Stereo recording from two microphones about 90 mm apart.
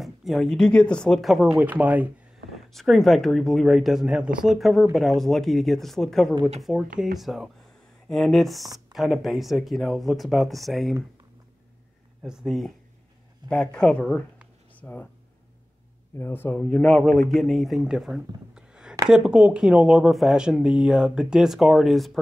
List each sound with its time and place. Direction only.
0.0 s speech: centre (ahead or behind)
1.6 s speech: 15° right (ahead or behind)
2.7 s speech: 5° left (ahead or behind)
12.2 s speech: 5° right (ahead or behind)
14.8 s speech: 20° left (ahead or behind)
16.2 s speech: 25° left (ahead or behind)
16.5 s speech: 10° left (ahead or behind)